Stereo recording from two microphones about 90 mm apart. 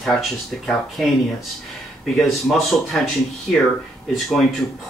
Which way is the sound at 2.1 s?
Centre (ahead or behind).